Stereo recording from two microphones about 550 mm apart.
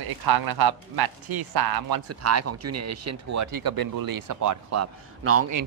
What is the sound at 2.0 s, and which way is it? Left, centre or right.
Speech, right.